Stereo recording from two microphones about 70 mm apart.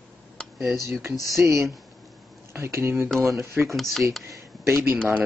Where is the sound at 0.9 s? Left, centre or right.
Right.